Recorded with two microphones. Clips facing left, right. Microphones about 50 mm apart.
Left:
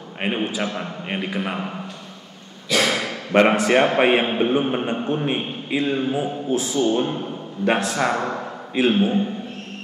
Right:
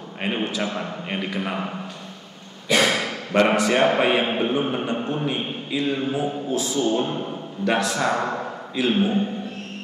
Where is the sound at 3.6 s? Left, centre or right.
Left.